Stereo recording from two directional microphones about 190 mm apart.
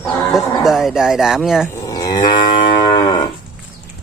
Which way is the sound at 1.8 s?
20° left (ahead or behind).